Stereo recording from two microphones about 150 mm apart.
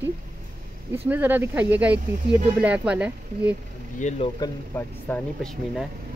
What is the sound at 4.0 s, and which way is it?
Speech, 50° left (ahead or behind).